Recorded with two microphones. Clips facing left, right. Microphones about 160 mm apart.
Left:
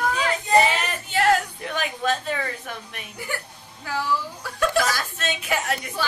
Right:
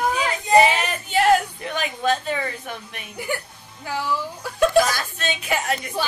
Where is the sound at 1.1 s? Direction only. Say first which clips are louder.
Right 3 dB; 20° right (ahead or behind).